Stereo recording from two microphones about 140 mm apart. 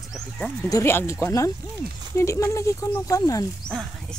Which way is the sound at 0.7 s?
20° left (ahead or behind).